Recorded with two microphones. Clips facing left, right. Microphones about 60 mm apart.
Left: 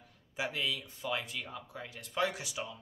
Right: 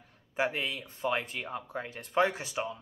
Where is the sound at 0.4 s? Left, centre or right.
Right.